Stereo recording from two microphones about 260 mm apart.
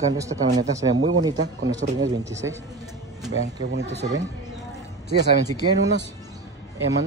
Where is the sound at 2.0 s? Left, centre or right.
Centre.